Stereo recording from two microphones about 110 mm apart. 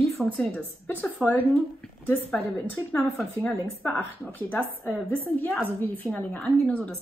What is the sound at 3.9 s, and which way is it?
A woman's voice, 15° left (ahead or behind).